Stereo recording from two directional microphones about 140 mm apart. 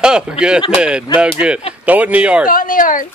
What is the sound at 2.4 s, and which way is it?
Speech, 80° left.